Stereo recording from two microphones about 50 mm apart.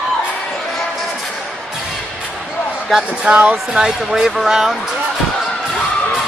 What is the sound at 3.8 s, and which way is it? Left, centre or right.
Speech, centre.